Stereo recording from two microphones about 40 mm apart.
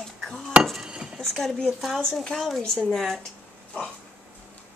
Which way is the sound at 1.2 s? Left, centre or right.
Centre.